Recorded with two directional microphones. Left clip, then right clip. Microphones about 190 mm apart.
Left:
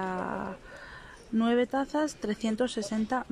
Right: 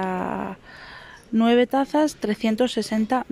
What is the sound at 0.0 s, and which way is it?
Dog, 10° right (ahead or behind).